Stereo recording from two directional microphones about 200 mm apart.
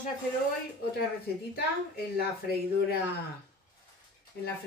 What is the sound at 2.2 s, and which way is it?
Speech, 50° left (ahead or behind).